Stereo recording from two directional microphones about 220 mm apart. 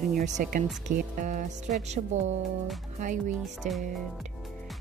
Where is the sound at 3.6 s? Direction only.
30° right (ahead or behind).